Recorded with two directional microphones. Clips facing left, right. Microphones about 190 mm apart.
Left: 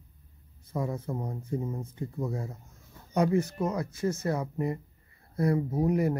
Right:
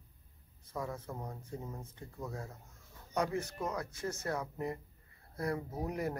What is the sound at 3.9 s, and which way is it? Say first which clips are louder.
Speech: left 8 dB; 5° left (ahead or behind).